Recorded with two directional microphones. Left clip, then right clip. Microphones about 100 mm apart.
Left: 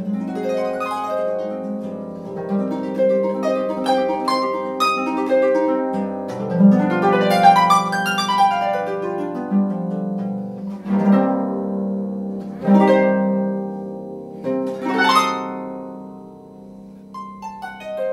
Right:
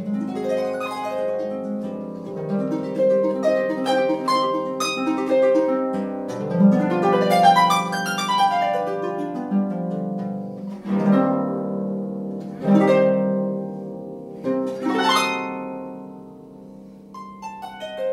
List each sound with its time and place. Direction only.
0.1 s harp: 20° right (ahead or behind)
10.9 s music: 20° right (ahead or behind)
12.6 s harp: 20° right (ahead or behind)
14.7 s harp: 15° right (ahead or behind)